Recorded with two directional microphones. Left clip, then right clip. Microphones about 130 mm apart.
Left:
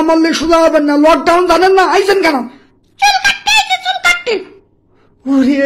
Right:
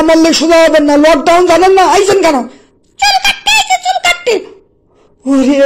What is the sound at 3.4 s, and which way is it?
Music, 10° right (ahead or behind).